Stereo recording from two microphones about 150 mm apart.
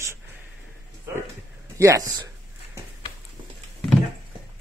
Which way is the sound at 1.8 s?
25° right (ahead or behind).